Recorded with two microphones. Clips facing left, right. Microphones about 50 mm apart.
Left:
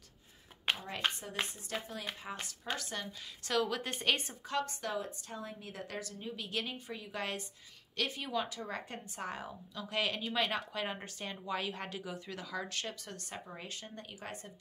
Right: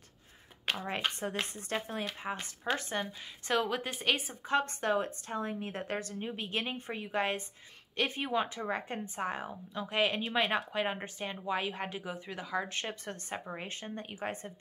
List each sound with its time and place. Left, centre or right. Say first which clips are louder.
0.7 s a sound: even; centre
1.7 s a woman's voice: right 5 dB; right; by 4.4 s centre
4.5 s a woman's voice: right 6 dB; right